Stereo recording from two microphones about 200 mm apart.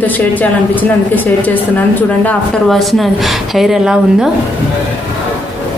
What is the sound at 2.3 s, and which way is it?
Speech, centre (ahead or behind).